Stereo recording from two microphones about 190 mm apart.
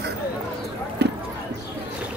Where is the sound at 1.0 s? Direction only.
60° right (ahead or behind).